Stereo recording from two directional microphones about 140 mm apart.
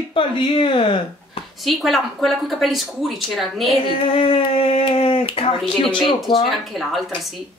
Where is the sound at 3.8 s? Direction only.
40° left (ahead or behind).